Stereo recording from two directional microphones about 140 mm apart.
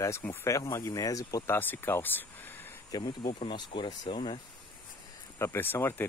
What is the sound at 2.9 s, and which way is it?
Speech, 35° left (ahead or behind).